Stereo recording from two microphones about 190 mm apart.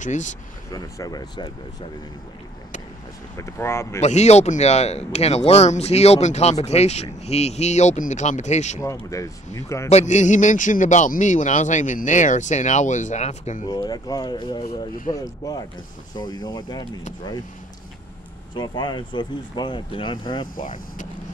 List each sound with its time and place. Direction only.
0.0 s a man's voice: 40° left (ahead or behind)
0.7 s speech: 20° left (ahead or behind)
3.3 s speech: 15° left (ahead or behind)
4.0 s a man's voice: 35° left (ahead or behind)
8.8 s speech: 15° left (ahead or behind)
9.8 s a man's voice: 35° left (ahead or behind)
13.7 s speech: 20° left (ahead or behind)
18.5 s speech: 25° left (ahead or behind)
20.5 s speech: 45° left (ahead or behind)